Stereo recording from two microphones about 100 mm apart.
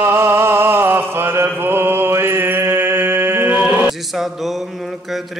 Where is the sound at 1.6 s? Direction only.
20° right (ahead or behind).